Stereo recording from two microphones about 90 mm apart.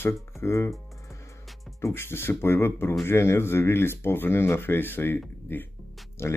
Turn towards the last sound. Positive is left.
turn(degrees=30)  # may be behind; listen again after turning